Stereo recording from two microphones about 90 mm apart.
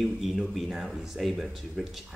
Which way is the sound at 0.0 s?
5° right (ahead or behind).